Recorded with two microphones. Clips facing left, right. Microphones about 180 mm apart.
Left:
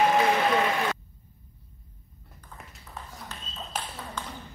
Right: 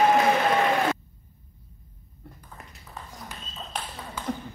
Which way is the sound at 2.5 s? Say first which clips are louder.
Left 1 dB; centre (ahead or behind).